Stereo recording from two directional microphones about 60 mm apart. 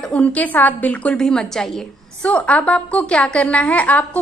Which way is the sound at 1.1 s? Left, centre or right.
Centre.